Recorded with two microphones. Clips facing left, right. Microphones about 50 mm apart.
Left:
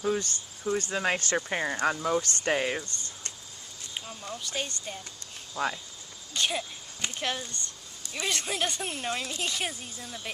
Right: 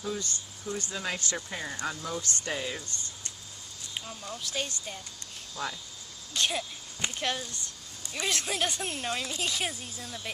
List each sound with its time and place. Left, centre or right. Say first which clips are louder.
0.0 s speech: left 6 dB; left
3.9 s speech: left 1 dB; centre
5.6 s cricket: left 5 dB; centre
6.3 s speech: even; centre